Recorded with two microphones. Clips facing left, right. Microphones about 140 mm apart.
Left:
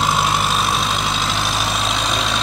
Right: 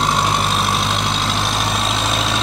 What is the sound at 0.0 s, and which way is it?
Vehicle, centre (ahead or behind).